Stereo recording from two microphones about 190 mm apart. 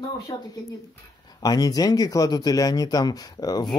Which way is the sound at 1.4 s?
20° left (ahead or behind).